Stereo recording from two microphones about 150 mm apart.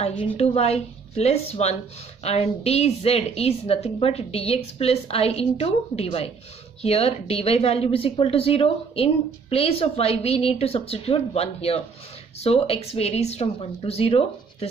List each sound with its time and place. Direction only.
0.4 s a woman's voice: 45° left (ahead or behind)